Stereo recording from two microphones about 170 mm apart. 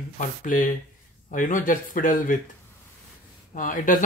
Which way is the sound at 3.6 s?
50° left (ahead or behind).